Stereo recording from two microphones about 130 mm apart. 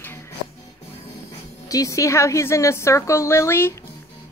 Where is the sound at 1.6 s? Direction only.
25° left (ahead or behind).